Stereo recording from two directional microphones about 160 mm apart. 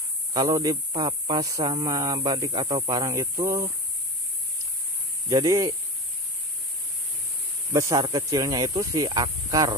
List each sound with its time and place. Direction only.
0.3 s speech: 25° right (ahead or behind)
5.3 s speech: 25° right (ahead or behind)
7.7 s speech: 25° right (ahead or behind)